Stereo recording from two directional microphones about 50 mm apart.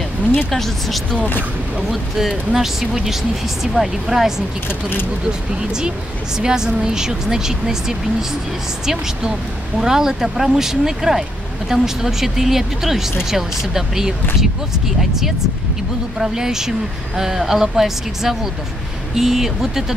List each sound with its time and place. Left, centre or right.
0.5 s speech: centre
4.6 s speech: left
6.3 s speech: centre